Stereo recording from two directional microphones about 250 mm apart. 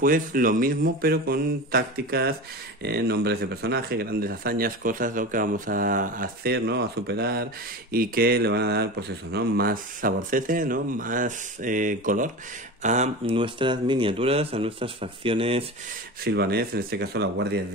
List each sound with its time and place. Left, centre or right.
0.0 s speech: right
16.3 s speech: right